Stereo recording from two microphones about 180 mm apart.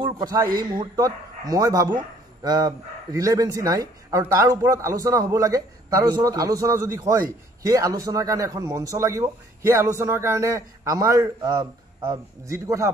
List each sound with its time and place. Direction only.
0.0 s a man's voice: 20° right (ahead or behind)